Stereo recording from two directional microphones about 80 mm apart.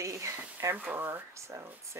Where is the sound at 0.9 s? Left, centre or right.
Right.